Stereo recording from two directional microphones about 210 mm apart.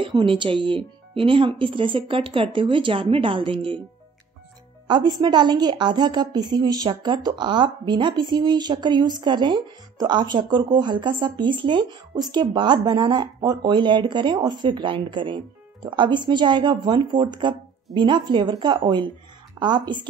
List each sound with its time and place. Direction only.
0.0 s speech: 25° right (ahead or behind)
4.8 s speech: 20° right (ahead or behind)